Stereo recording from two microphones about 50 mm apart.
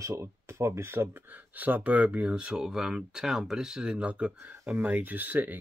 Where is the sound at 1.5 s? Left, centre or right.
Right.